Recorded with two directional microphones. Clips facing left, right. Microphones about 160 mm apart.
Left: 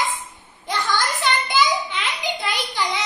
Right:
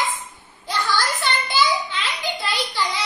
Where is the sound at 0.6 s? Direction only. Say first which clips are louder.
Even; 20° left (ahead or behind).